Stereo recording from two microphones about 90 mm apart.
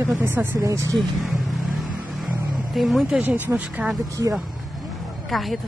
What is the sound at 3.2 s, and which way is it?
Speech, 20° right (ahead or behind).